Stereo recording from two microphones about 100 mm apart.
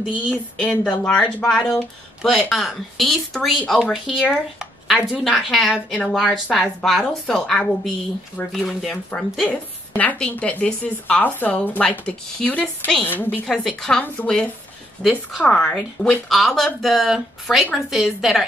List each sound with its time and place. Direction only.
0.3 s a woman's voice: 10° left (ahead or behind)
9.5 s a woman's voice: 15° left (ahead or behind)
13.5 s a woman's voice: 5° left (ahead or behind)